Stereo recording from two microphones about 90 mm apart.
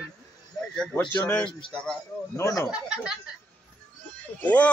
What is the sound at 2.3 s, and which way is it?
Speech, 40° left (ahead or behind).